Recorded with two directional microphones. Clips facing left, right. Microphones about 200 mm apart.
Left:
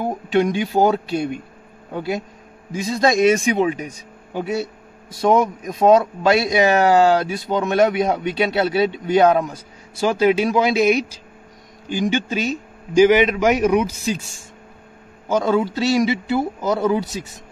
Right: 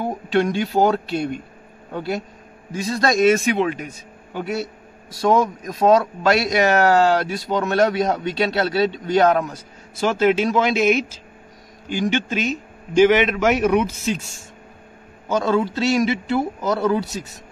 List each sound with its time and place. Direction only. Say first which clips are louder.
0.0 s speech: left 1 dB; 15° left (ahead or behind)
15.2 s speech: left 1 dB; 15° left (ahead or behind)